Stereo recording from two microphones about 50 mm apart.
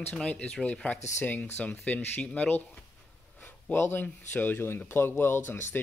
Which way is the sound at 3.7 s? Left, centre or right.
Left.